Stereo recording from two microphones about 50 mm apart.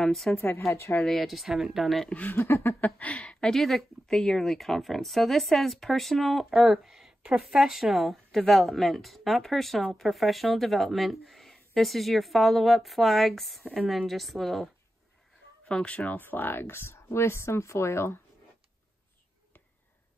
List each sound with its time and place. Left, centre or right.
0.0 s speech: centre
0.7 s a woman's voice: left
1.0 s speech: centre
2.0 s speech: left
2.3 s a sound: left
3.0 s speech: left
3.5 s speech: centre
15.7 s speech: left
16.2 s speech: left